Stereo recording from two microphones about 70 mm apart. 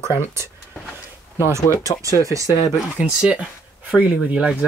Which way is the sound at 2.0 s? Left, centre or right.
Right.